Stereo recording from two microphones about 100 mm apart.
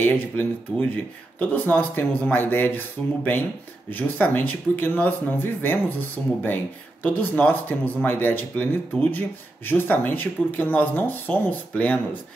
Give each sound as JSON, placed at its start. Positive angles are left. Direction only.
{"t": 0.0, "sound": "speech", "side_deg": 15}
{"t": 3.9, "sound": "speech", "side_deg": 20}